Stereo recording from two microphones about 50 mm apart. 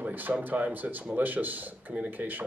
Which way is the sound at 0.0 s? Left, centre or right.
Right.